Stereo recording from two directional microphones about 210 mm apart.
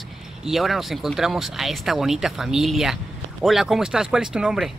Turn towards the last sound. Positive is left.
turn(degrees=0)  # may be behind; listen again after turning